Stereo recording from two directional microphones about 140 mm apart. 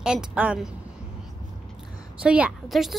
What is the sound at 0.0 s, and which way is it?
Speech, 5° right (ahead or behind).